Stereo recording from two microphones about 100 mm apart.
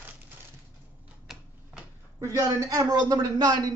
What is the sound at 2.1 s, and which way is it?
A man's voice, 35° right (ahead or behind).